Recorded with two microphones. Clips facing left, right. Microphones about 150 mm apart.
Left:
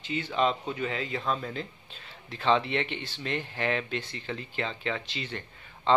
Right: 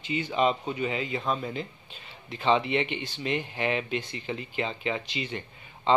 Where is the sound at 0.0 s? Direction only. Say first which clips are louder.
Right 2 dB; 10° right (ahead or behind).